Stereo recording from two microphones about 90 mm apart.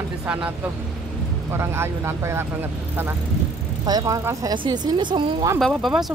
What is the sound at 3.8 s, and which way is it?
Speech, 45° right (ahead or behind).